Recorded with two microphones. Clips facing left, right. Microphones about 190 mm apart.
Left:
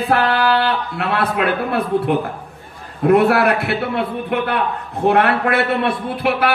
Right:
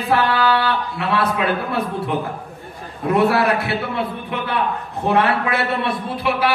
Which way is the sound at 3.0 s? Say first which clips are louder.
Left 4 dB; 60° left (ahead or behind).